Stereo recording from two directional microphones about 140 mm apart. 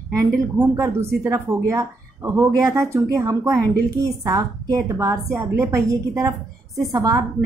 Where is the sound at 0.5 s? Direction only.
20° right (ahead or behind).